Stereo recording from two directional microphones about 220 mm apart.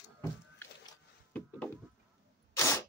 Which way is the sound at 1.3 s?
5° left (ahead or behind).